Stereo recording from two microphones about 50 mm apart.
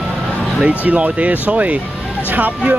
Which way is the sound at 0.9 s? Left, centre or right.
Right.